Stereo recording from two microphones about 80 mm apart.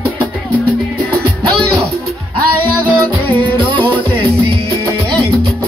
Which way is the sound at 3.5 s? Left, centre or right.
Right.